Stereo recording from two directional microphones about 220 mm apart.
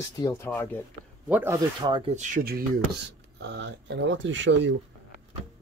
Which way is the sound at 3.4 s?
50° right (ahead or behind).